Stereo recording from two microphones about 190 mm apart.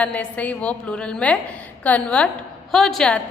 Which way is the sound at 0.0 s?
5° left (ahead or behind).